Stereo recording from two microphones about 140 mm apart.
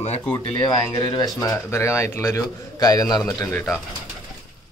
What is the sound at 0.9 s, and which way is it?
Speech, 30° left (ahead or behind).